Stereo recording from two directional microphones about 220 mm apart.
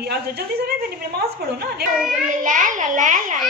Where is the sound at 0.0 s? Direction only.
45° right (ahead or behind).